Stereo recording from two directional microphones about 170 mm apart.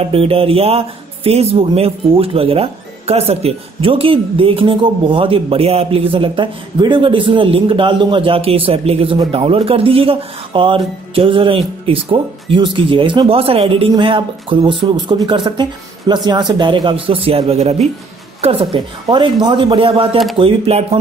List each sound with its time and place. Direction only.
0.1 s a man's voice: 35° right (ahead or behind)